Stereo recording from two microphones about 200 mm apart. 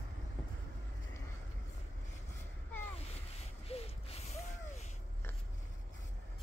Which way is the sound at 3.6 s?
30° left (ahead or behind).